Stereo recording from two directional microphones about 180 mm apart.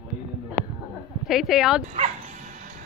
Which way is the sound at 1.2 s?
Centre (ahead or behind).